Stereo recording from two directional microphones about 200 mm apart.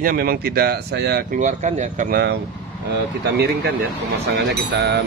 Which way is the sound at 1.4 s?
35° right (ahead or behind).